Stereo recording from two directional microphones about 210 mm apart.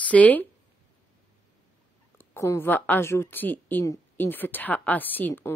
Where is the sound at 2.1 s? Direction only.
10° left (ahead or behind).